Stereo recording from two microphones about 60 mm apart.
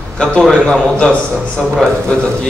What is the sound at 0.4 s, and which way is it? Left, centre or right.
Speech, centre.